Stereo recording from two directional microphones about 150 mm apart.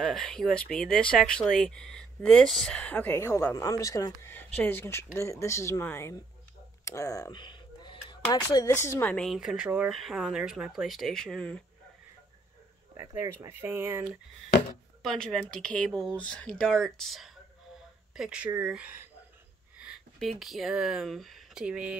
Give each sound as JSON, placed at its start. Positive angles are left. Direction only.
{"t": 0.0, "sound": "speech", "side_deg": 5}
{"t": 6.8, "sound": "a sound", "side_deg": 20}
{"t": 8.3, "sound": "speech", "side_deg": 25}
{"t": 9.1, "sound": "speech", "side_deg": 0}
{"t": 12.9, "sound": "speech", "side_deg": -15}
{"t": 15.0, "sound": "speech", "side_deg": 0}